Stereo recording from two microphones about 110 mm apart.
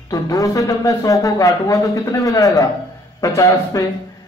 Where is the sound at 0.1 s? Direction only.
30° left (ahead or behind).